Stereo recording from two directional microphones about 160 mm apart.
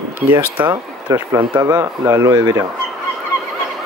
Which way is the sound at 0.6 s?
20° right (ahead or behind).